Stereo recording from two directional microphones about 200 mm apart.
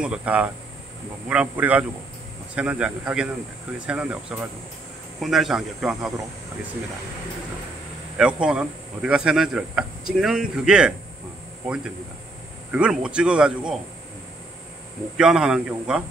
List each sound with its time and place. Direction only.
0.0 s a man's voice: 5° right (ahead or behind)
8.2 s speech: 5° right (ahead or behind)
15.1 s speech: 5° right (ahead or behind)